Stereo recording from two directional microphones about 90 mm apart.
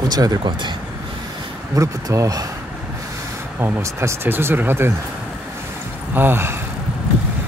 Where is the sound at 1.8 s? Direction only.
40° right (ahead or behind).